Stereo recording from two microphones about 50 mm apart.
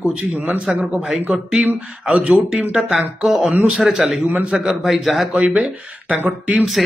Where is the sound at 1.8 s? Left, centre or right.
Centre.